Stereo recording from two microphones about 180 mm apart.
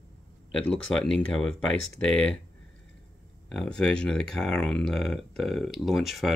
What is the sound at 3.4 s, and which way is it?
Speech, 5° left (ahead or behind).